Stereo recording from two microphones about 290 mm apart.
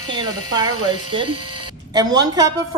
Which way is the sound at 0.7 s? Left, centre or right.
Right.